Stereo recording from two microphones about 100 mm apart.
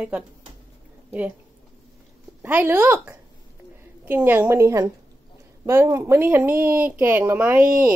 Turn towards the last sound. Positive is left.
turn(degrees=-15)  # may be behind; listen again after turning